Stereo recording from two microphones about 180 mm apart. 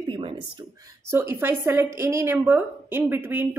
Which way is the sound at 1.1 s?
15° right (ahead or behind).